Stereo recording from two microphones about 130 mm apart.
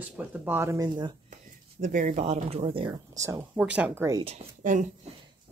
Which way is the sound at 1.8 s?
85° right.